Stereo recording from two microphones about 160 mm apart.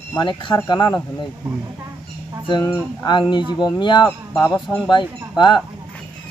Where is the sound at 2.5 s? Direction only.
30° left (ahead or behind).